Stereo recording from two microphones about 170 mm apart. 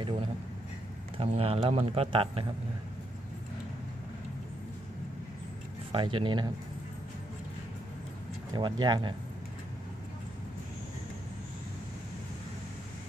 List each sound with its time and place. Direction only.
1.1 s speech: 35° right (ahead or behind)
5.9 s speech: 30° right (ahead or behind)
8.5 s speech: 25° right (ahead or behind)